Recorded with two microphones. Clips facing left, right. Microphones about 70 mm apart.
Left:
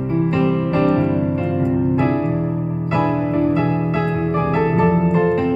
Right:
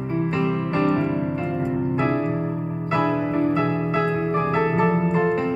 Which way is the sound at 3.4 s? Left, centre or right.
Right.